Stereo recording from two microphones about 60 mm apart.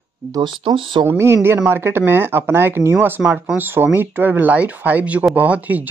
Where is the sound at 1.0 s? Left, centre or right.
Right.